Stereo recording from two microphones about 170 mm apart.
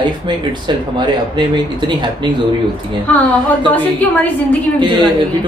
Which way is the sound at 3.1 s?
10° left (ahead or behind).